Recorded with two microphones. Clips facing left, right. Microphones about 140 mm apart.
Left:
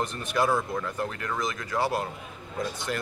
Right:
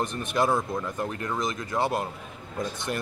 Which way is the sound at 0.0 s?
20° right (ahead or behind).